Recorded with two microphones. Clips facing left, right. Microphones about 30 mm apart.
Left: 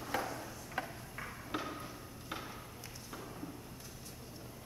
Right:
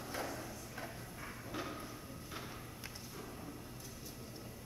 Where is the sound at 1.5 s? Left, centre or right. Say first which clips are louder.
Left 4 dB; left.